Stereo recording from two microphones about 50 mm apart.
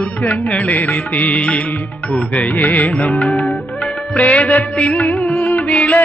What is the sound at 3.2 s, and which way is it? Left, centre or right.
Music, centre.